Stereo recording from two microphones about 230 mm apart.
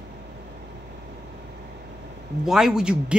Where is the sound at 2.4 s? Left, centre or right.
Centre.